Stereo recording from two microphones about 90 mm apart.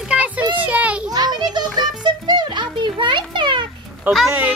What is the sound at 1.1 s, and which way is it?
Music, 50° right (ahead or behind).